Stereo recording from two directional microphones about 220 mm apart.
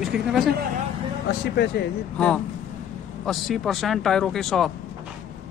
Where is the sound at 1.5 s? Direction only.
50° left (ahead or behind).